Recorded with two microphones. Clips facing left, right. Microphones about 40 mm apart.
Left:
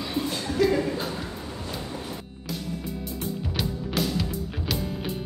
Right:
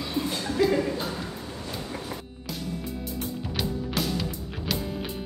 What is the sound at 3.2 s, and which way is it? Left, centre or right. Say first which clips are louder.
Music: left 1 dB; centre.